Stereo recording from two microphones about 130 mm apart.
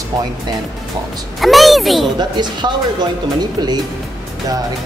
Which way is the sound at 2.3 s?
35° right (ahead or behind).